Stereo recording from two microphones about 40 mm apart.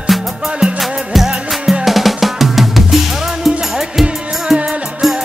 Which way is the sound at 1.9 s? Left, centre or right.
Centre.